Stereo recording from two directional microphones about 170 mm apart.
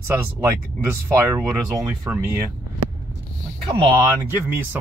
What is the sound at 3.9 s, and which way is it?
Speech, 10° right (ahead or behind).